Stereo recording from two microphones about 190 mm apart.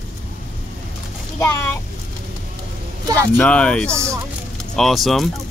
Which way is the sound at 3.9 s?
15° right (ahead or behind).